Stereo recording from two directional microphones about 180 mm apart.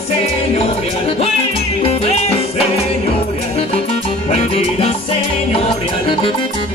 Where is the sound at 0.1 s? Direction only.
35° left (ahead or behind).